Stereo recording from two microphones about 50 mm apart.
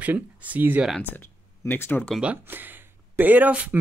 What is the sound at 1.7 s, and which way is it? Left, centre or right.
Speech, left.